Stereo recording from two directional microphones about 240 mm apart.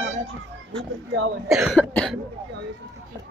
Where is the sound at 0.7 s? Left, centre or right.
Right.